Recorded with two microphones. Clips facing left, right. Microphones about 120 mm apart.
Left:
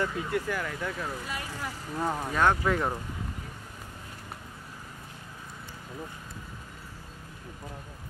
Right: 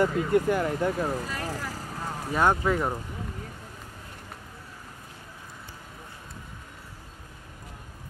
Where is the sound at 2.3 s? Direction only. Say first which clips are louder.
Right 3 dB; 10° right (ahead or behind).